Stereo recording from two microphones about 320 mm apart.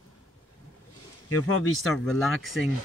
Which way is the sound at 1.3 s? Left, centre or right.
Left.